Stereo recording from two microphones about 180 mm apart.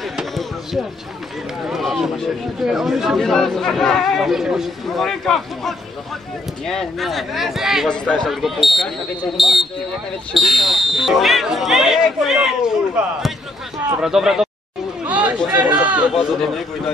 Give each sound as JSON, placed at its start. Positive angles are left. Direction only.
{"t": 0.1, "sound": "basketball bounce", "side_deg": 0}
{"t": 1.7, "sound": "speech", "side_deg": 0}
{"t": 14.0, "sound": "speech", "side_deg": -5}
{"t": 15.0, "sound": "a sound", "side_deg": -5}
{"t": 16.3, "sound": "speech", "side_deg": 0}